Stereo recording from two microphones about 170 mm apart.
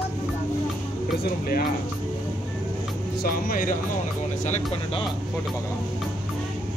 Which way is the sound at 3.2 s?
60° left (ahead or behind).